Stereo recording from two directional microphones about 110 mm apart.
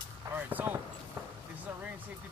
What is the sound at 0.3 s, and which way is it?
Speech, 15° right (ahead or behind).